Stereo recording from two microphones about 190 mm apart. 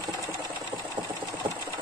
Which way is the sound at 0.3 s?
15° right (ahead or behind).